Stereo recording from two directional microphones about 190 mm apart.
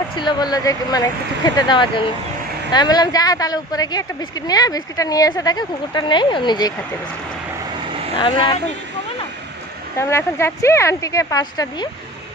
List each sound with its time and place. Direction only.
0.1 s speech: 25° left (ahead or behind)
8.2 s speech: 25° left (ahead or behind)
9.9 s speech: 15° left (ahead or behind)